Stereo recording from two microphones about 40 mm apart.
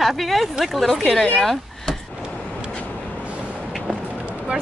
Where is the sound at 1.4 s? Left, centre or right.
Centre.